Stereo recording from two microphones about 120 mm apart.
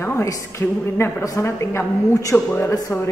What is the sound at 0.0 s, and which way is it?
A woman's voice, 25° left (ahead or behind).